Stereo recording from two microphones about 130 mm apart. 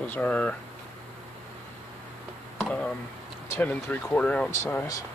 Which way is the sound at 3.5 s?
15° left (ahead or behind).